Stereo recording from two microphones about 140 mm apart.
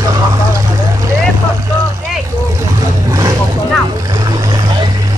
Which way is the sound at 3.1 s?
25° right (ahead or behind).